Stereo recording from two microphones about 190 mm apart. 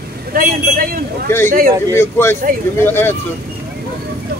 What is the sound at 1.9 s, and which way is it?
Speech, 15° left (ahead or behind).